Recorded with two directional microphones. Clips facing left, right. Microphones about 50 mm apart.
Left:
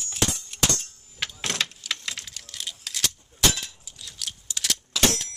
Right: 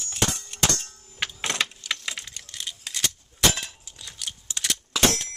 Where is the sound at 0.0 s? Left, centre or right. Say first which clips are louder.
Right 1 dB; centre.